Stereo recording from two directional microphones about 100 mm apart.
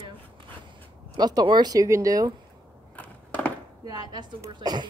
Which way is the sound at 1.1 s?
45° right (ahead or behind).